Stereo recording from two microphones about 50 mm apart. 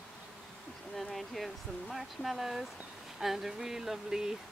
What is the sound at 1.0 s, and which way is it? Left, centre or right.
Speech, centre.